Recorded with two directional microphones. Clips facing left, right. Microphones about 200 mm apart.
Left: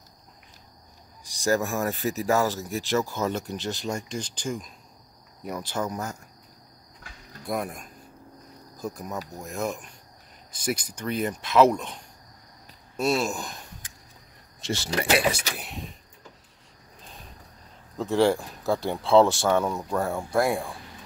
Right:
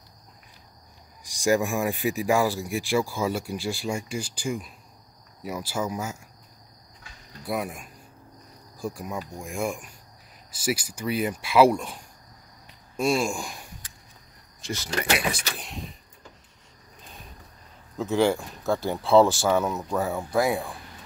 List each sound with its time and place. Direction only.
1.2 s speech: 15° right (ahead or behind)
7.4 s speech: 5° right (ahead or behind)
14.6 s a sound: 30° left (ahead or behind)
15.4 s speech: 5° left (ahead or behind)
17.9 s speech: centre (ahead or behind)